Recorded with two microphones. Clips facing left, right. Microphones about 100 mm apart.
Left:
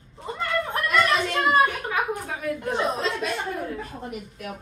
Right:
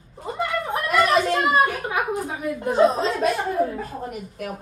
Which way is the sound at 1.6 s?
25° right (ahead or behind).